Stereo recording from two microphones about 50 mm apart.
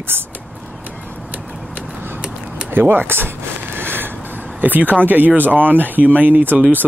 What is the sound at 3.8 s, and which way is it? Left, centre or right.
Vehicle, right.